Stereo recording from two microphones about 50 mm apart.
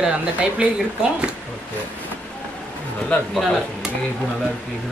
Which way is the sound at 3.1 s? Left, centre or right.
Left.